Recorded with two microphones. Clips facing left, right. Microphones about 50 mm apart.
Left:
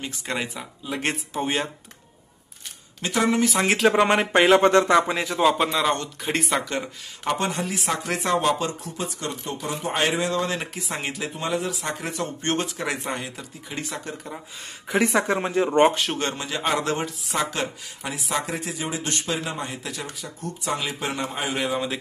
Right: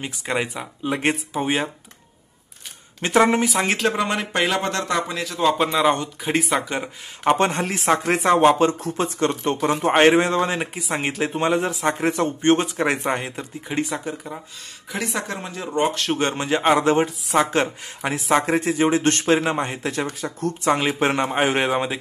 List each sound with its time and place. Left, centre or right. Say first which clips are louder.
0.0 s speech: right 4 dB; centre
3.0 s speech: right 5 dB; right
3.4 s speech: left 1 dB; centre
3.9 s speech: left 4 dB; left
5.4 s speech: right 3 dB; centre
6.6 s speech: right 2 dB; centre
7.3 s speech: right 5 dB; right
9.9 s speech: right 7 dB; right
10.5 s speech: right 4 dB; centre
11.0 s speech: right 8 dB; right
13.8 s speech: right 4 dB; centre
14.9 s speech: left 6 dB; left
16.3 s speech: right 7 dB; right
21.6 s speech: right 4 dB; right